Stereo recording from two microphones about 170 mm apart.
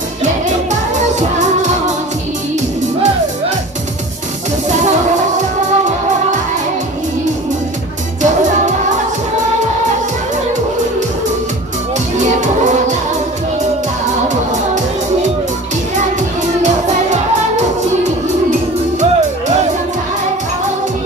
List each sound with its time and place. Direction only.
0.7 s music: 45° right (ahead or behind)
12.4 s music: 45° right (ahead or behind)
16.6 s music: 45° right (ahead or behind)
18.9 s music: 45° right (ahead or behind)